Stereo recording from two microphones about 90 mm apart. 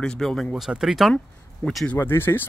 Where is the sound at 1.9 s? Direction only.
25° left (ahead or behind).